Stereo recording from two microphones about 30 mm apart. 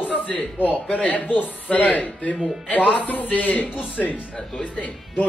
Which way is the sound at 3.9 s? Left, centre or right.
Left.